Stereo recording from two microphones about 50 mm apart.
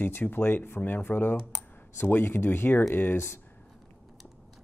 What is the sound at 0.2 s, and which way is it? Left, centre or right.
Speech, left.